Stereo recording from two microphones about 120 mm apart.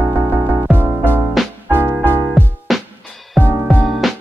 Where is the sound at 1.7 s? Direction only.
15° right (ahead or behind).